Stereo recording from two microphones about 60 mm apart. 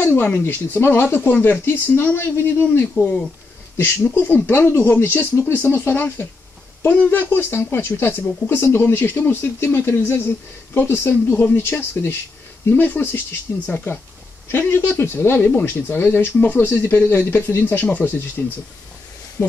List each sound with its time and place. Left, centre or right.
0.0 s speech: left